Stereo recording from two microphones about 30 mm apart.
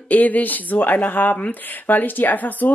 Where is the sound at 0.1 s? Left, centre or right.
Left.